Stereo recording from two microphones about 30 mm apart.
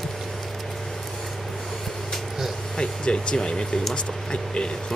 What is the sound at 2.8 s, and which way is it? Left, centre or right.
Speech, left.